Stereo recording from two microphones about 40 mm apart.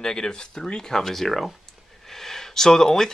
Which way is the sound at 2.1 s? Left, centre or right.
Centre.